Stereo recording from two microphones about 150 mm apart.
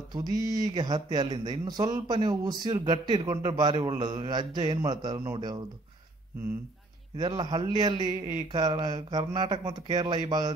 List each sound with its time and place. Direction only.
0.1 s speech: 25° right (ahead or behind)
7.2 s speech: 30° right (ahead or behind)